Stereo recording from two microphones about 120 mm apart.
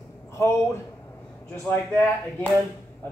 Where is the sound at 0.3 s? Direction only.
20° left (ahead or behind).